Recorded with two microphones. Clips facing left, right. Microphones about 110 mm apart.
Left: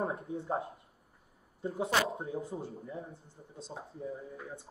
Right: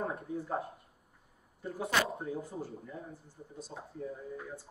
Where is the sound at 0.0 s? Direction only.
25° left (ahead or behind).